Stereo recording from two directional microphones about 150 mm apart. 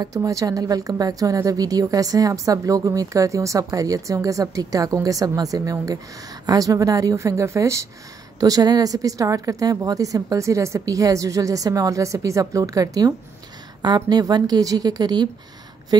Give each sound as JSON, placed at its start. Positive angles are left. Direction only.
{"t": 0.0, "sound": "a woman's voice", "side_deg": -20}